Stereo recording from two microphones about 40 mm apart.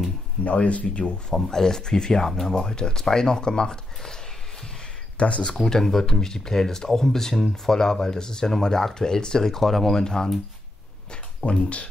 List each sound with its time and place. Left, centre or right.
0.4 s speech: left
1.3 s speech: centre
2.5 s speech: centre
5.1 s speech: left
5.6 s speech: centre
11.1 s speech: left